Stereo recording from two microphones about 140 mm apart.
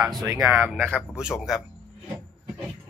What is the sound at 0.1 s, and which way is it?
Speech, 25° right (ahead or behind).